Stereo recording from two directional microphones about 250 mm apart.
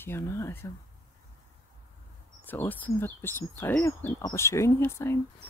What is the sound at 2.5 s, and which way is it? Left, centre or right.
Speech, centre.